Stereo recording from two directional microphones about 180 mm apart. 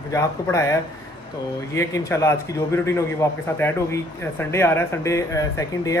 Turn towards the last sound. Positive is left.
turn(degrees=20)  # may be behind; listen again after turning